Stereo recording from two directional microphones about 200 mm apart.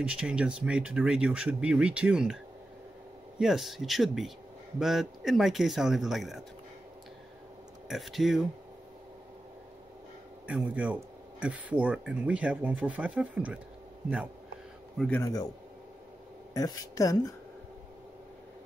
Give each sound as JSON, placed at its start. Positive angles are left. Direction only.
{"t": 0.0, "sound": "speech", "side_deg": -5}
{"t": 7.9, "sound": "speech", "side_deg": 0}
{"t": 10.4, "sound": "speech", "side_deg": -5}
{"t": 15.0, "sound": "speech", "side_deg": 10}
{"t": 16.5, "sound": "speech", "side_deg": 15}